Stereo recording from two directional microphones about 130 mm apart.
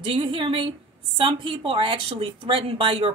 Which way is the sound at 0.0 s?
45° right (ahead or behind).